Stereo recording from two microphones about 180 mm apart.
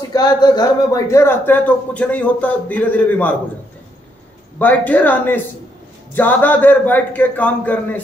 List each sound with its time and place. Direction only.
0.1 s speech: 20° left (ahead or behind)
4.6 s speech: 10° left (ahead or behind)